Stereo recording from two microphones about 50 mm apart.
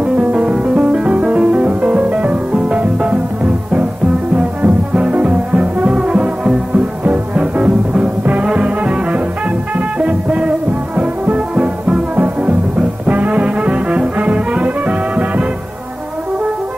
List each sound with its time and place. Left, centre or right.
0.0 s music: right
4.4 s music: right